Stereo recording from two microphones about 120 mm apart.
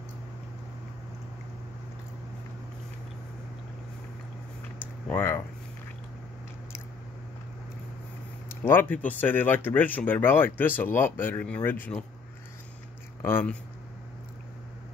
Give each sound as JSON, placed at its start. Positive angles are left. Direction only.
{"t": 4.7, "sound": "a sound", "side_deg": 15}
{"t": 8.5, "sound": "speech", "side_deg": 20}
{"t": 13.2, "sound": "speech", "side_deg": 20}